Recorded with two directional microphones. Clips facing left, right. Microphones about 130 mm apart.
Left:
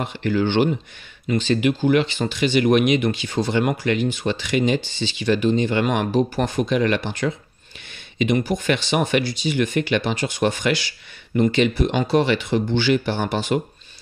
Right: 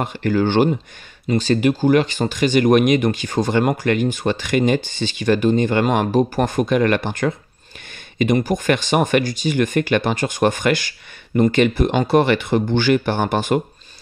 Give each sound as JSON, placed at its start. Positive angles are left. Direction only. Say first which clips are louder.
{"t": 0.0, "sound": "speech", "louder": "right 3 dB", "side_deg": -45}